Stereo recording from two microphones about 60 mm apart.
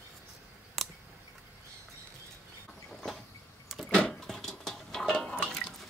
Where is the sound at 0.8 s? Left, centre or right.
Centre.